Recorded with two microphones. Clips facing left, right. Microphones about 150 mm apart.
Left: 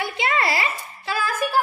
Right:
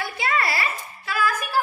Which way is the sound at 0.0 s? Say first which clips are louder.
Left 2 dB; 25° left (ahead or behind).